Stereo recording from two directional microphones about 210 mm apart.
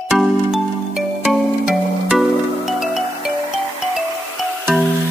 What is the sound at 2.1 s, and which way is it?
Music, centre (ahead or behind).